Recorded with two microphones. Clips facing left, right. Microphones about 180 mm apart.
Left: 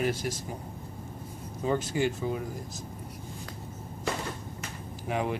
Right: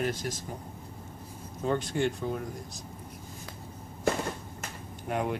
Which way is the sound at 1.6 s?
5° left (ahead or behind).